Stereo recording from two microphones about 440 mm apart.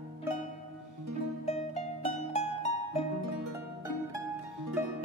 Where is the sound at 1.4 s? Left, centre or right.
Centre.